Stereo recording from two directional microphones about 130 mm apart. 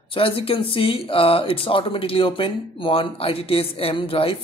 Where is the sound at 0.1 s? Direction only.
45° left (ahead or behind).